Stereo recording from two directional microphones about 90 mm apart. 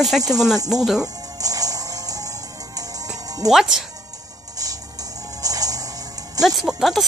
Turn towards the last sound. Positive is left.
turn(degrees=0)  # may be behind; listen again after turning